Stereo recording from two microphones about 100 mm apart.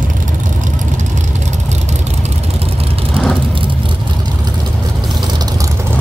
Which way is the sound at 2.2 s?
80° right.